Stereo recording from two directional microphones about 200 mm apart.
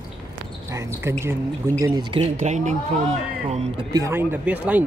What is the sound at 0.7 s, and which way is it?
Speech, 15° right (ahead or behind).